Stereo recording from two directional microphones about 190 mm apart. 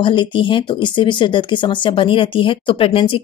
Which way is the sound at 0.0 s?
25° left (ahead or behind).